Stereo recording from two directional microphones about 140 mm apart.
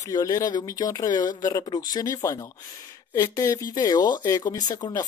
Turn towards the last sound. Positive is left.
turn(degrees=30)  # may be behind; listen again after turning